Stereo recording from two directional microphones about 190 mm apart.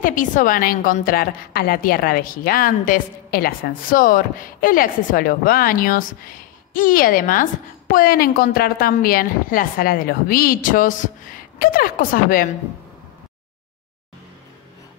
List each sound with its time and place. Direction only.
0.0 s a woman's voice: 45° left (ahead or behind)